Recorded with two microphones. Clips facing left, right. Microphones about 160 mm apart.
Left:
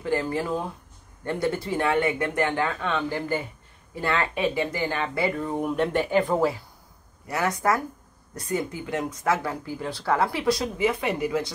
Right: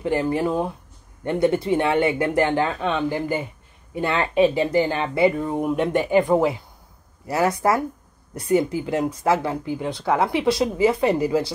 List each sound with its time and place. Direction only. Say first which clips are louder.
0.0 s speech: right 4 dB; 20° right (ahead or behind)
7.2 s speech: right 4 dB; 30° right (ahead or behind)